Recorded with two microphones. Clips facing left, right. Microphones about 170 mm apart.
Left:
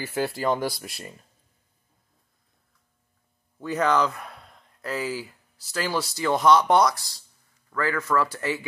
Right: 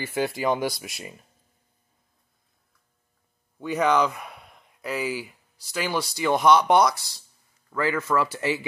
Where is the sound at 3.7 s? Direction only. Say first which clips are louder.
Right 1 dB; 5° right (ahead or behind).